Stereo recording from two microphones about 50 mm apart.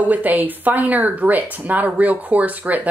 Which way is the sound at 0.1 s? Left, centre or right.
Right.